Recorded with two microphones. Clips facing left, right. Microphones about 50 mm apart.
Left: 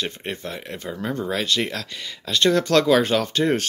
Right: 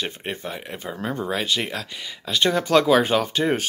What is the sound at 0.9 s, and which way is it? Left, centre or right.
Speech, right.